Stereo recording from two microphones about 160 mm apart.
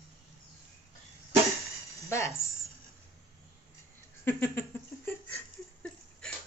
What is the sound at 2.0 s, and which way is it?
Speech, 15° left (ahead or behind).